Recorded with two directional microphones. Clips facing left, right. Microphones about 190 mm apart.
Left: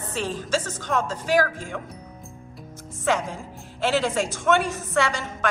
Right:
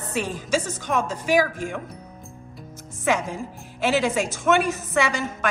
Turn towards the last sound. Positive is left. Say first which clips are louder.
# right 1 dB
turn(degrees=-10)  # may be behind; listen again after turning